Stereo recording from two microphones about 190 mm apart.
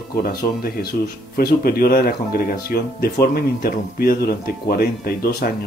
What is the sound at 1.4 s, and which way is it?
Speech, 55° left (ahead or behind).